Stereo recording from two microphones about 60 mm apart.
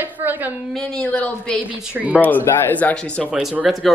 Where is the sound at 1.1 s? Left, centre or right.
Left.